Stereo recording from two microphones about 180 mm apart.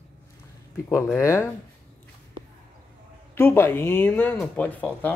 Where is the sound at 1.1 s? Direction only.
15° left (ahead or behind).